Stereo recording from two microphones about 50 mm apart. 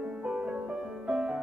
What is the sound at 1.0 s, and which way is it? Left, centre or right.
Music, centre.